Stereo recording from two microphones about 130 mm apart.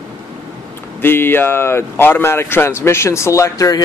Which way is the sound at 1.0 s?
15° left (ahead or behind).